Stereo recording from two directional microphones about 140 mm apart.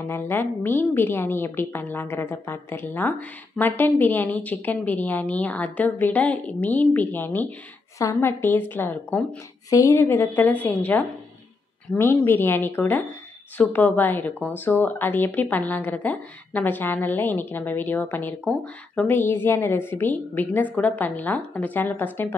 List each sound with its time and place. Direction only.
0.0 s speech: 15° left (ahead or behind)